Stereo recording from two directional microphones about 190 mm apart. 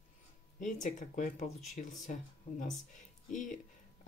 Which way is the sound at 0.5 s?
40° left (ahead or behind).